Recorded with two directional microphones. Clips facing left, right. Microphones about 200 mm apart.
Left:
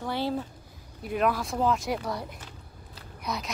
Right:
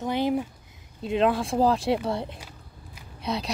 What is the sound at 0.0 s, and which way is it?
A child's voice, 20° right (ahead or behind).